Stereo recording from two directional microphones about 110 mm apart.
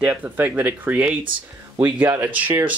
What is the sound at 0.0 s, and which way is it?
Speech, 10° right (ahead or behind).